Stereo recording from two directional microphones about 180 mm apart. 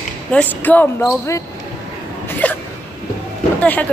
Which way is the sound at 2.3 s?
10° left (ahead or behind).